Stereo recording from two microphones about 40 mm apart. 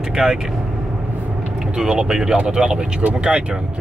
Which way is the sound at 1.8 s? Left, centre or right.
Centre.